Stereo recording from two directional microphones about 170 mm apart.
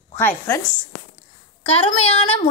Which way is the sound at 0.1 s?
15° left (ahead or behind).